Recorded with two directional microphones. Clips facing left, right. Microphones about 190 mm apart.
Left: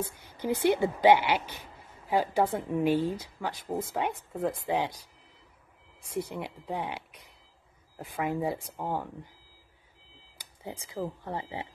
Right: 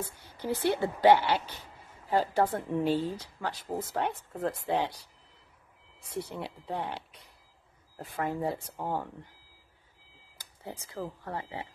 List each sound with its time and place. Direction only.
0.0 s a woman's voice: 15° left (ahead or behind)
6.0 s a woman's voice: 15° left (ahead or behind)
10.6 s a woman's voice: 15° left (ahead or behind)